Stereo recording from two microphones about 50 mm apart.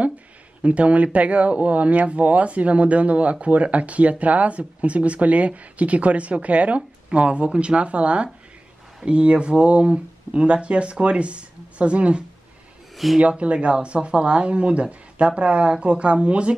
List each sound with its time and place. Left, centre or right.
0.6 s speech: right
12.9 s speech: centre
13.2 s speech: right